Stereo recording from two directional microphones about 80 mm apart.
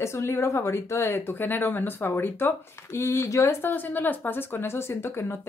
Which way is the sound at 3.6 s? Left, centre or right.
Left.